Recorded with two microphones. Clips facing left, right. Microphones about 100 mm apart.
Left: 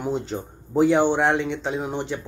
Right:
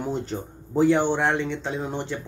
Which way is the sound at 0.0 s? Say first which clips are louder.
Left 2 dB; 15° left (ahead or behind).